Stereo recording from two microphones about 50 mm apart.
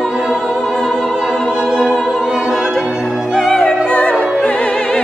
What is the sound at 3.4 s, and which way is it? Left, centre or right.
Opera, centre.